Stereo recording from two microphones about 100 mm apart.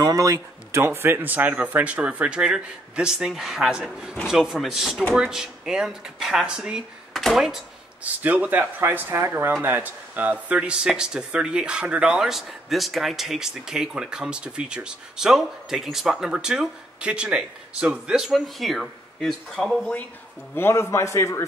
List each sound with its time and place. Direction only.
0.0 s speech: 35° right (ahead or behind); by 7.6 s centre (ahead or behind)
8.0 s speech: 15° right (ahead or behind); by 19.8 s centre (ahead or behind)
20.5 s a man's voice: 25° left (ahead or behind)